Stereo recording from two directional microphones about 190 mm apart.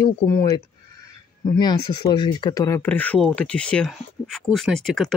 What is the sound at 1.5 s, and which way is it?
Speech, 20° left (ahead or behind).